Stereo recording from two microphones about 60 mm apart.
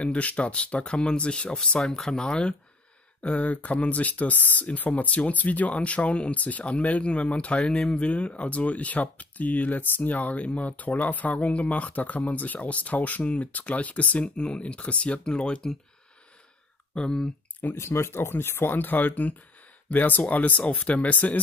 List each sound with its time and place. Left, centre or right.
0.0 s speech: left
16.9 s speech: centre
17.7 s speech: left